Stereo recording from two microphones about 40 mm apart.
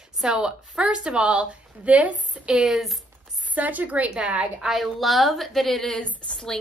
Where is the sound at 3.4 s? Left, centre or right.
Right.